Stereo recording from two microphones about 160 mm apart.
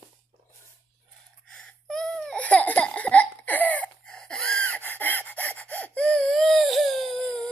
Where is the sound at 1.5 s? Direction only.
5° left (ahead or behind).